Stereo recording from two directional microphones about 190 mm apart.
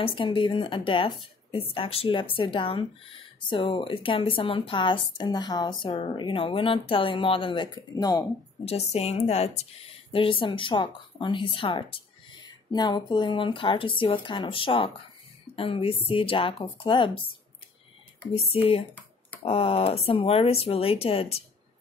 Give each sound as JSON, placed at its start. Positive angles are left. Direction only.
{"t": 0.0, "sound": "a woman's voice", "side_deg": 25}
{"t": 8.6, "sound": "a woman's voice", "side_deg": 35}
{"t": 18.3, "sound": "speech", "side_deg": 30}